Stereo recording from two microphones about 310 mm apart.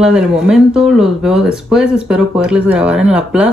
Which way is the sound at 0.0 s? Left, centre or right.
Centre.